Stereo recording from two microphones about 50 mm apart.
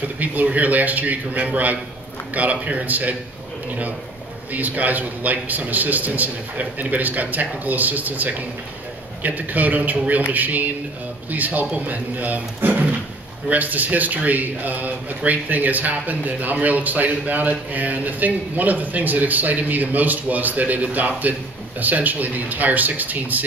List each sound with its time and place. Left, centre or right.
0.2 s speech: right
4.5 s speech: right